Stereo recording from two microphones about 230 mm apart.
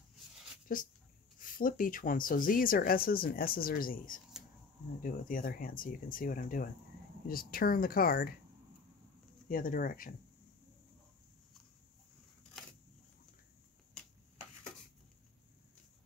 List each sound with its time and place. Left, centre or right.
0.7 s speech: left
9.5 s speech: left